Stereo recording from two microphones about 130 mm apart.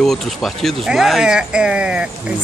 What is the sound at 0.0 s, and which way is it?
Speech, centre (ahead or behind).